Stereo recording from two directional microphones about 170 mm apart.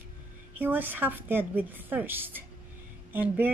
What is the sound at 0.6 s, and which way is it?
Speech, 10° right (ahead or behind).